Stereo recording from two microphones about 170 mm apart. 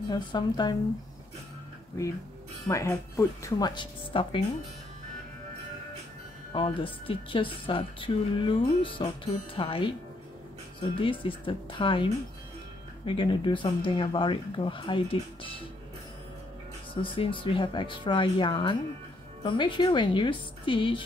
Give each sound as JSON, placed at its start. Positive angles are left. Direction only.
{"t": 0.1, "sound": "speech", "side_deg": 25}
{"t": 2.7, "sound": "speech", "side_deg": 20}
{"t": 6.5, "sound": "a woman's voice", "side_deg": 30}
{"t": 16.9, "sound": "speech", "side_deg": 30}